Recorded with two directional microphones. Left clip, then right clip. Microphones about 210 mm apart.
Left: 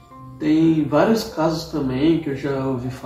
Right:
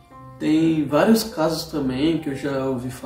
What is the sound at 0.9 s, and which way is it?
Speech, 50° right (ahead or behind).